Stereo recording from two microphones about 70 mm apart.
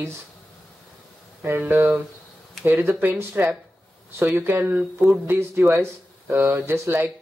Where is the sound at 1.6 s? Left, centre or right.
Right.